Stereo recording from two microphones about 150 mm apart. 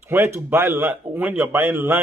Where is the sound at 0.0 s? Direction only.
15° right (ahead or behind).